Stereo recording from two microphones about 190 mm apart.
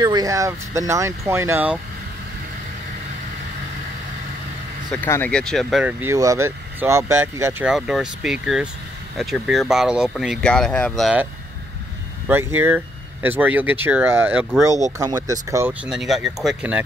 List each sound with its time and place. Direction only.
0.0 s speech: 20° right (ahead or behind)
5.0 s speech: 10° left (ahead or behind); by 7.6 s 15° right (ahead or behind)
7.6 s speech: 5° right (ahead or behind)
12.3 s speech: 10° right (ahead or behind)